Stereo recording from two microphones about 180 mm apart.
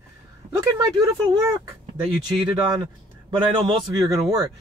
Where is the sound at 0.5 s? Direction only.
20° right (ahead or behind).